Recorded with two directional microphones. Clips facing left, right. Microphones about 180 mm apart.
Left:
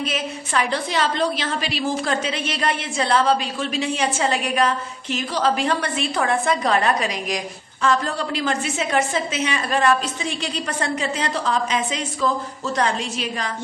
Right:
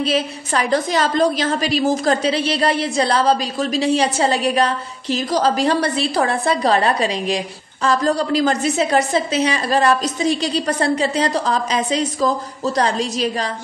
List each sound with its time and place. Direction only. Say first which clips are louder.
0.0 s a woman's voice: right 6 dB; 35° right (ahead or behind)